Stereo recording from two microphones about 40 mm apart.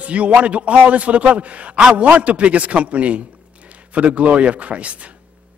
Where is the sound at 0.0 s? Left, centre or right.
Right.